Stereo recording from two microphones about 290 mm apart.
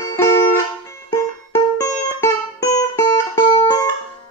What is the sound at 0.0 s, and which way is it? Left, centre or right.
Music, centre.